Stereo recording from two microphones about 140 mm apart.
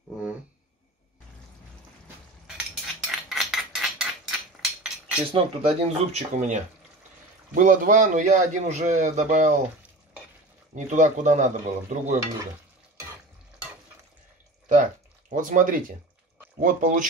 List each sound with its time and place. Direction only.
3.0 s a sound: centre (ahead or behind)
5.3 s speech: 50° right (ahead or behind)
7.5 s a man's voice: 70° right (ahead or behind)
10.7 s a man's voice: 60° right (ahead or behind)
14.7 s speech: 70° right (ahead or behind)